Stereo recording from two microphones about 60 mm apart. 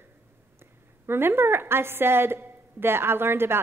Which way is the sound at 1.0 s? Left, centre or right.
Right.